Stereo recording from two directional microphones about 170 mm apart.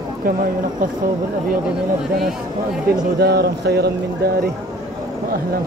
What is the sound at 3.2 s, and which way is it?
Speech, 70° right (ahead or behind).